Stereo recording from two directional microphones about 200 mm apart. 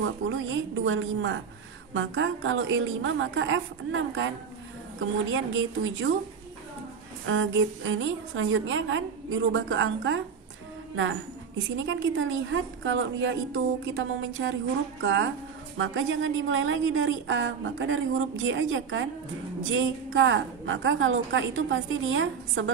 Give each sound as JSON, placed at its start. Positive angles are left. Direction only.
{"t": 0.0, "sound": "a woman's voice", "side_deg": -75}
{"t": 7.2, "sound": "a woman's voice", "side_deg": -75}